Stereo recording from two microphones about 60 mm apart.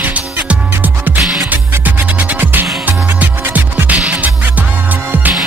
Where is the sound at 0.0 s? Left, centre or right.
Right.